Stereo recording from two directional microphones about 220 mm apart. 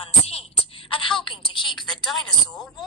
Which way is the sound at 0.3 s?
25° left (ahead or behind).